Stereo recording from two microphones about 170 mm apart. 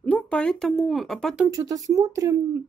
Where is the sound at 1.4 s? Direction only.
20° right (ahead or behind).